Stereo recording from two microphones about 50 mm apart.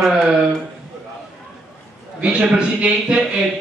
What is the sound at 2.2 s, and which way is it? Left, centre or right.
A man's voice, centre.